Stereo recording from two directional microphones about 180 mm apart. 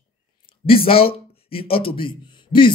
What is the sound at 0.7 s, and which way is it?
A man's voice, 30° left (ahead or behind).